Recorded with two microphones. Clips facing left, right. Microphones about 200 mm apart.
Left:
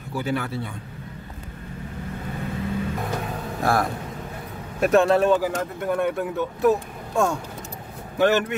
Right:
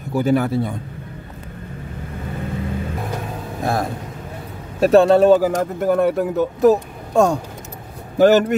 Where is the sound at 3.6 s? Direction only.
20° right (ahead or behind).